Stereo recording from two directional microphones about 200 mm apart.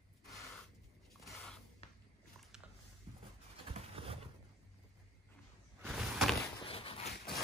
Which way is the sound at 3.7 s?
30° right (ahead or behind).